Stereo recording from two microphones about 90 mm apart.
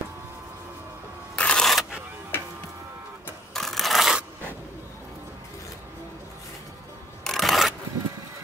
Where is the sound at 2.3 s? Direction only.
25° left (ahead or behind).